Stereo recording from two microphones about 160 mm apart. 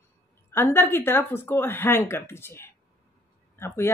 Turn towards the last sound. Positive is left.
turn(degrees=15)  # may be behind; listen again after turning